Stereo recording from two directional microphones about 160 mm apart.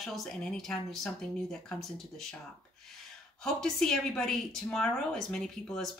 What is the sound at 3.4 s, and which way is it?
A woman's voice, 5° left (ahead or behind).